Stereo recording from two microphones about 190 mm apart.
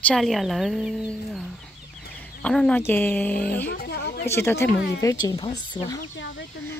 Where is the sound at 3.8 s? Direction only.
60° left (ahead or behind).